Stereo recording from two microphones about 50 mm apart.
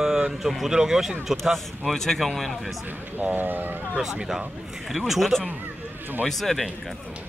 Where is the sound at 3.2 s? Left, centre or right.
Right.